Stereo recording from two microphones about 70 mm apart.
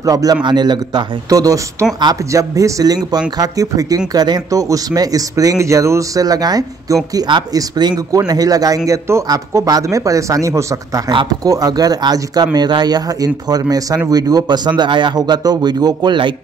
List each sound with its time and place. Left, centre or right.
0.0 s speech: right
8.1 s speech: right
9.7 s speech: right
11.1 s speech: right
12.5 s speech: right